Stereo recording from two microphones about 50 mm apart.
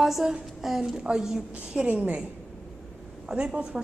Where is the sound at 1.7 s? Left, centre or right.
Right.